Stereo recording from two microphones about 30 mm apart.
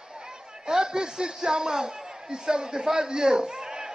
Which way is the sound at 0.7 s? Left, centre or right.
Right.